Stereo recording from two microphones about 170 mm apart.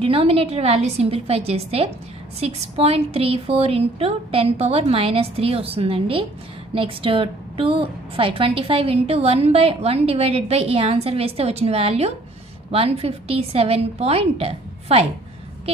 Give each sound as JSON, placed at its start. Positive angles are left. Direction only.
{"t": 0.0, "sound": "a woman's voice", "side_deg": -35}